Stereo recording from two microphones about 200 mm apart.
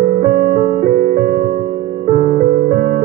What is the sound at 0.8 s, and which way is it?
Music, 45° right (ahead or behind).